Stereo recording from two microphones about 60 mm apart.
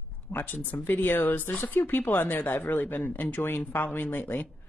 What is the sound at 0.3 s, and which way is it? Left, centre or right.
Speech, left.